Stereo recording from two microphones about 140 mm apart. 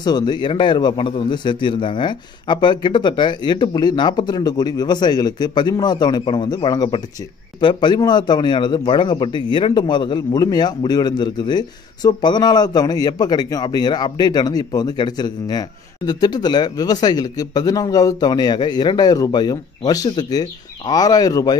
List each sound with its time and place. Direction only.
0.0 s a man's voice: 30° left (ahead or behind)